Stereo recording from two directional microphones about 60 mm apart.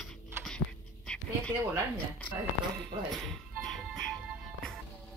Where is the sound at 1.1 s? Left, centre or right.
Left.